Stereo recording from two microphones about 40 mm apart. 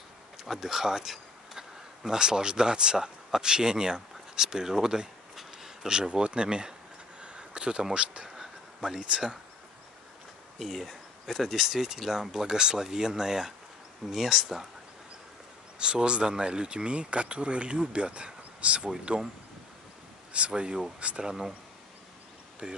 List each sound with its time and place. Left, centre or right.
0.4 s speech: centre
5.3 s a sound: centre
5.9 s speech: centre
7.2 s a sound: right
7.9 s speech: right
8.4 s a sound: centre
10.6 s speech: centre
15.8 s speech: right
20.3 s speech: right
21.2 s speech: centre
22.6 s speech: right